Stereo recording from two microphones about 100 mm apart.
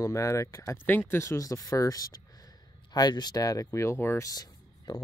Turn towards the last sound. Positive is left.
turn(degrees=40)  # may be behind; listen again after turning